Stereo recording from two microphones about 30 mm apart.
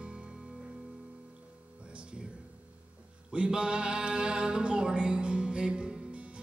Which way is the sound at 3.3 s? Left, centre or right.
Right.